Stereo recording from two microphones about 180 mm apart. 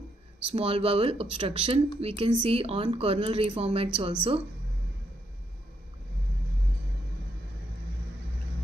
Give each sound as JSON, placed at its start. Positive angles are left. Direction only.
{"t": 0.6, "sound": "speech", "side_deg": -30}